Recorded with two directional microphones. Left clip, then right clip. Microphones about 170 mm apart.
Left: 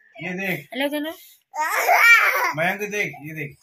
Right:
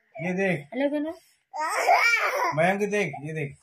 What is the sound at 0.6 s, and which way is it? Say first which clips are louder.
Speech: left 2 dB; 15° right (ahead or behind).